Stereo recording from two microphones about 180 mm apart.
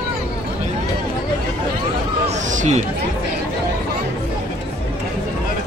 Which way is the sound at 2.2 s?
40° right (ahead or behind).